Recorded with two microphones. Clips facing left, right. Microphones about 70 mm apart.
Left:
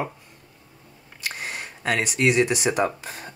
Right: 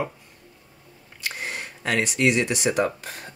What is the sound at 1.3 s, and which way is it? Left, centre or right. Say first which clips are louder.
Speech: right 1 dB; centre.